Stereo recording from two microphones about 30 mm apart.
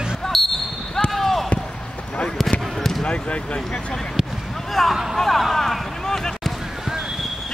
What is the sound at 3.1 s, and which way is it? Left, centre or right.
Basketball bounce, left.